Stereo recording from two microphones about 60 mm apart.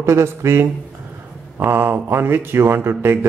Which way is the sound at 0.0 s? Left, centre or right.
Right.